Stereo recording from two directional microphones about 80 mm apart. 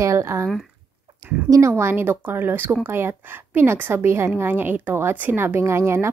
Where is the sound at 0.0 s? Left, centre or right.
Right.